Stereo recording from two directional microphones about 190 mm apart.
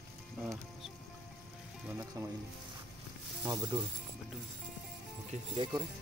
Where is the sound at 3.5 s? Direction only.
20° right (ahead or behind).